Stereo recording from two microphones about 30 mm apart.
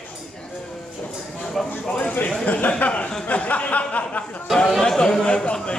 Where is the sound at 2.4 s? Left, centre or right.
Left.